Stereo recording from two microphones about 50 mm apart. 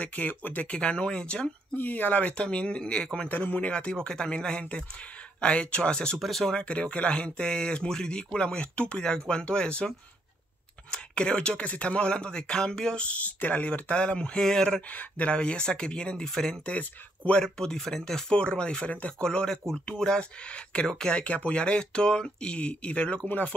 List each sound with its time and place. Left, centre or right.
0.0 s speech: left
1.8 s speech: left
2.3 s speech: left
3.3 s speech: left
3.7 s speech: centre
6.1 s speech: centre
6.5 s speech: left
13.0 s speech: left; by 14.8 s centre
14.9 s speech: left
15.3 s speech: centre
17.4 s speech: centre
18.9 s speech: left
19.2 s speech: centre